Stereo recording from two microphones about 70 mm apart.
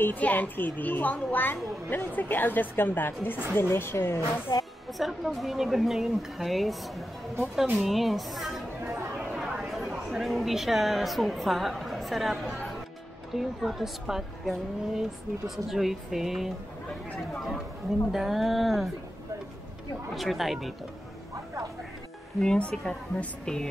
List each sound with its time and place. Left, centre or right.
0.0 s a woman's voice: left
4.5 s speech: left
4.9 s a woman's voice: centre
18.1 s a woman's voice: centre
20.2 s a woman's voice: centre
22.4 s speech: centre